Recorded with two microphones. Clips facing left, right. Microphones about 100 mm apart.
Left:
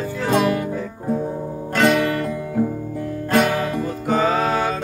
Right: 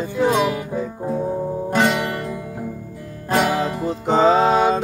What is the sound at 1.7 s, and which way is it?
Music, 20° right (ahead or behind).